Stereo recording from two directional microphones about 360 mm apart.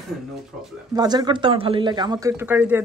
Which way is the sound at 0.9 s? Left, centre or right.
Centre.